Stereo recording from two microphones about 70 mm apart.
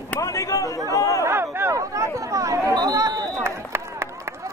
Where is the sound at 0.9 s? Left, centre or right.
Left.